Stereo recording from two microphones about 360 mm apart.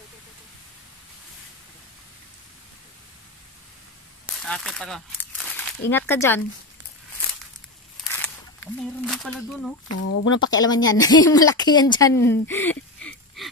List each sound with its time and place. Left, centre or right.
4.4 s speech: centre
8.0 s a sound: centre
9.8 s speech: left
10.6 s a woman's voice: centre